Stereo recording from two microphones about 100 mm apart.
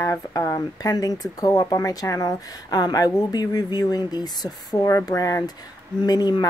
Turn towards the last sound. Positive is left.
turn(degrees=40)  # may be behind; listen again after turning